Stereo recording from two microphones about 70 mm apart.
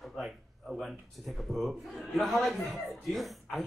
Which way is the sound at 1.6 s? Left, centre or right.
Centre.